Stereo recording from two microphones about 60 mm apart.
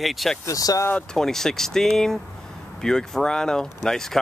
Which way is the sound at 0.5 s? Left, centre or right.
Left.